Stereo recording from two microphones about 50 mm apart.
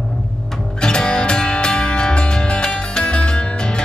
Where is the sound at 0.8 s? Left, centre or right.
Centre.